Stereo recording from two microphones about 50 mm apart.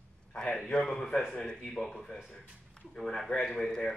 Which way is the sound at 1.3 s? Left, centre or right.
Centre.